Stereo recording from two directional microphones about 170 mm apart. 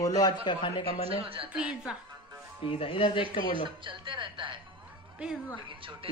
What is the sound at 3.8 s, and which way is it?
Speech, 30° right (ahead or behind).